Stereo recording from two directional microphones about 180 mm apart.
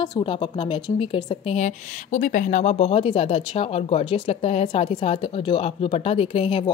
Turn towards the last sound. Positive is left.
turn(degrees=30)  # may be behind; listen again after turning